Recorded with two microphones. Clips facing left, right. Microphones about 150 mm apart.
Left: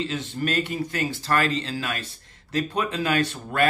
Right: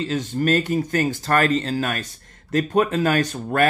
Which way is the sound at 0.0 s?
40° right (ahead or behind).